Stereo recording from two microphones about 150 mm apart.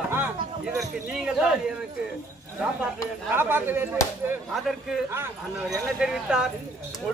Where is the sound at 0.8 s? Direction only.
5° right (ahead or behind).